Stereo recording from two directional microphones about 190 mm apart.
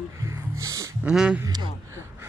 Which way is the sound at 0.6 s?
15° right (ahead or behind).